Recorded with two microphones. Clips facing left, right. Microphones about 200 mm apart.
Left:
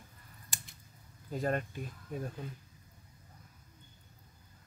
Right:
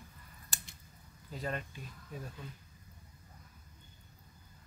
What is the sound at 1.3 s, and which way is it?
Speech, 50° left (ahead or behind).